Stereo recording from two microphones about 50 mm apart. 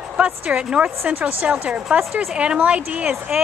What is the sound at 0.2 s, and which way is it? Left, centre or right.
Speech, right.